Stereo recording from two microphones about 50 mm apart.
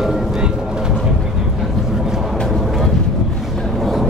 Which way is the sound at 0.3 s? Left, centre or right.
Centre.